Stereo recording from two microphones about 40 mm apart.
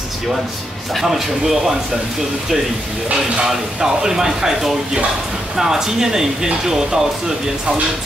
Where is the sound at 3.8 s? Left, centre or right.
Centre.